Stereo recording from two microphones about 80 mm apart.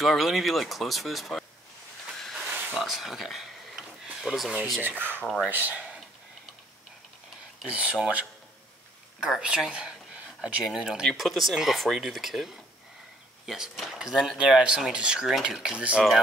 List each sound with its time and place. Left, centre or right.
0.0 s speech: centre
2.1 s a sound: centre
4.1 s speech: centre
4.8 s speech: right
5.8 s a sound: centre
7.6 s speech: centre
9.2 s speech: centre